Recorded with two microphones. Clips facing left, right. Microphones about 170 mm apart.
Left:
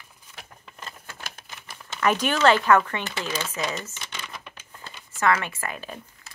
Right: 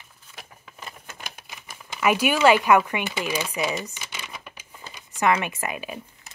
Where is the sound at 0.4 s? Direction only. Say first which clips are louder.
Even; 5° right (ahead or behind).